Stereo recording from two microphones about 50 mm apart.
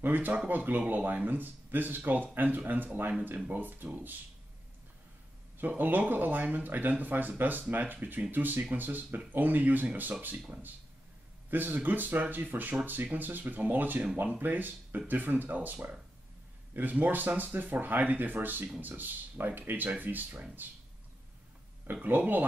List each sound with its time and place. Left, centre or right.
0.0 s speech: right
5.6 s speech: right
11.5 s speech: right
22.0 s speech: right